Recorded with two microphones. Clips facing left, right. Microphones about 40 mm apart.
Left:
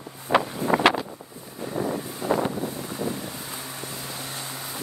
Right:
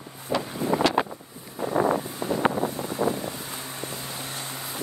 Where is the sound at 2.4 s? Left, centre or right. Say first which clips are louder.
Right 3 dB; right.